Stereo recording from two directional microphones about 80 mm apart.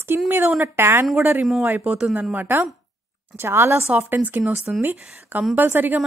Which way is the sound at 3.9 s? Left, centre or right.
Right.